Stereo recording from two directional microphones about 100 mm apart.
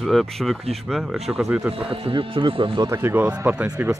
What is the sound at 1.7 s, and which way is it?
Speech, 60° right (ahead or behind).